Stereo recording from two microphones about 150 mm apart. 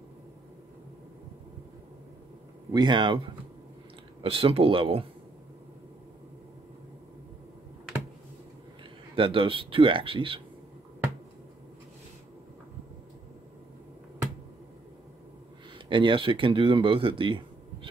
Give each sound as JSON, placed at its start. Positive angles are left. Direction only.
{"t": 2.7, "sound": "speech", "side_deg": -30}
{"t": 4.2, "sound": "speech", "side_deg": -40}
{"t": 9.1, "sound": "speech", "side_deg": -35}
{"t": 15.9, "sound": "speech", "side_deg": -35}